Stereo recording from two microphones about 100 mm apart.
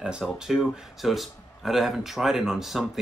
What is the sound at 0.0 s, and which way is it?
Speech, 5° right (ahead or behind).